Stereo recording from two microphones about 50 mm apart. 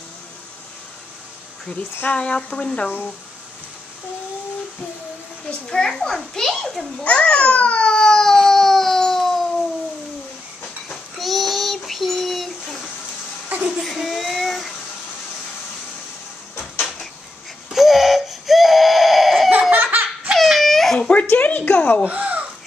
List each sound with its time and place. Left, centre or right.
2.0 s speech: centre
5.7 s a child's voice: centre
7.1 s babbling: centre
11.1 s child singing: centre
17.6 s a sound: centre
19.7 s laughter: right
20.3 s a sound: centre
21.1 s a woman's voice: left
22.0 s babbling: right